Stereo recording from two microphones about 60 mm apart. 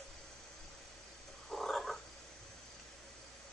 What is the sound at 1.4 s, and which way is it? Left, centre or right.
Frog, centre.